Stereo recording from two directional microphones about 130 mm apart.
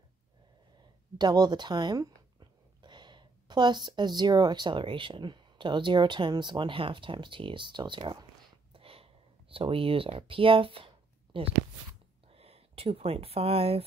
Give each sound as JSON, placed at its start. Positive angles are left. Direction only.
{"t": 1.1, "sound": "speech", "side_deg": -30}
{"t": 8.7, "sound": "speech", "side_deg": -45}